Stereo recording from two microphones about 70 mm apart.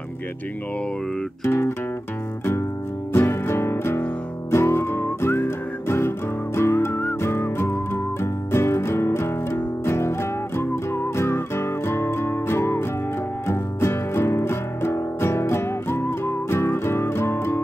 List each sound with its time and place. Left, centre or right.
1.4 s music: left
3.1 s music: left